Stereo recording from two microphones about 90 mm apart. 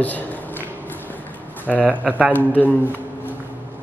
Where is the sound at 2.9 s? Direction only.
20° right (ahead or behind).